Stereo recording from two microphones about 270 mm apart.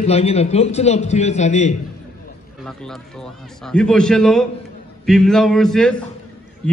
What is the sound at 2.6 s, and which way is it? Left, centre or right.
A man's voice, centre.